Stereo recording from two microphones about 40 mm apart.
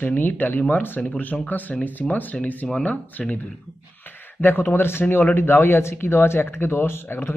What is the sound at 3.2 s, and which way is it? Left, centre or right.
Speech, left.